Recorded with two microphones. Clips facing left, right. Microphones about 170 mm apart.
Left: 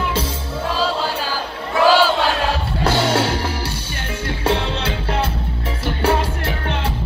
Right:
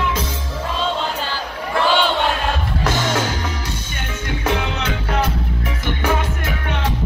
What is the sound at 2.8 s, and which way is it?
Music, 30° left (ahead or behind).